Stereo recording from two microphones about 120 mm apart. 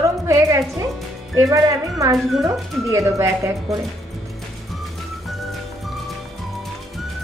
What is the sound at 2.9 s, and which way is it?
Speech, 25° right (ahead or behind).